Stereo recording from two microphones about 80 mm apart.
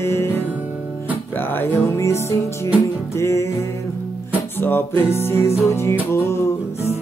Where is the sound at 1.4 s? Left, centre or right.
Left.